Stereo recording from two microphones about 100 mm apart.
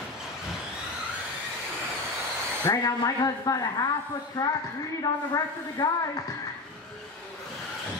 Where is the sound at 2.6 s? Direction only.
35° left (ahead or behind).